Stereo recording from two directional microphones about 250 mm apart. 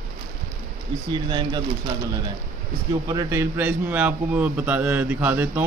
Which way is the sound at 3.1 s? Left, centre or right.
Centre.